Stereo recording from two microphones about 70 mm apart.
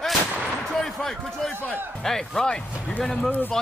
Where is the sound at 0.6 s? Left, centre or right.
Centre.